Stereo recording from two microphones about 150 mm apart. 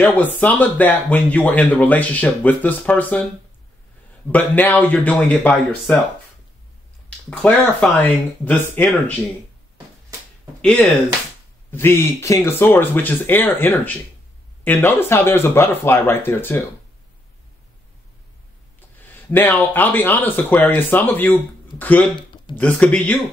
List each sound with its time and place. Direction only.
0.0 s speech: 10° left (ahead or behind)
4.3 s speech: 10° left (ahead or behind)
7.2 s speech: 5° left (ahead or behind)
10.6 s speech: 5° left (ahead or behind)
18.9 s speech: 15° left (ahead or behind)
22.1 s a sound: 30° left (ahead or behind)
22.6 s speech: 10° left (ahead or behind)